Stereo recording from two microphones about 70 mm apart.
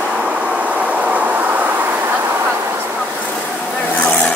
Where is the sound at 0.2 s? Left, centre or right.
Centre; by 2.4 s right.